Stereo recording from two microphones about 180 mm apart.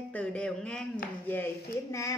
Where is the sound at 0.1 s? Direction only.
5° left (ahead or behind).